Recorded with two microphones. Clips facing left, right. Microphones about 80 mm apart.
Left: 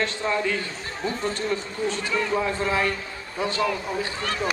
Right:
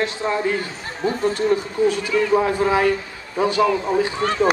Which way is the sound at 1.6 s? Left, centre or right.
Centre.